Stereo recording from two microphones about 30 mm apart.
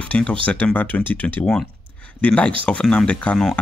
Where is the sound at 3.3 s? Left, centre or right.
Left.